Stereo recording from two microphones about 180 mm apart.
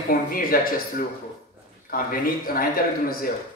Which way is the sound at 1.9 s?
55° left (ahead or behind).